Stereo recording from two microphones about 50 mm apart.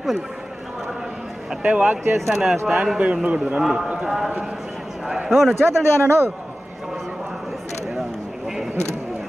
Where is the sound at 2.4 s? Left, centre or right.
Centre.